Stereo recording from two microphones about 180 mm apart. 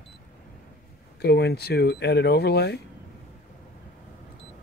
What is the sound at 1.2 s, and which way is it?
Speech, 65° left (ahead or behind).